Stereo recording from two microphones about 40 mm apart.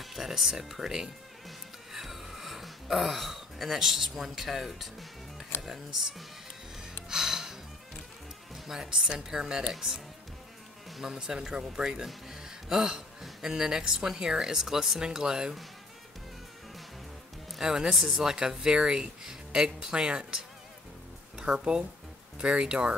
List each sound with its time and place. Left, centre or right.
0.0 s speech: centre
1.9 s a sound: centre
7.1 s music: centre
8.6 s a woman's voice: centre
8.9 s speech: centre
11.1 s speech: centre
17.6 s speech: centre
21.5 s speech: centre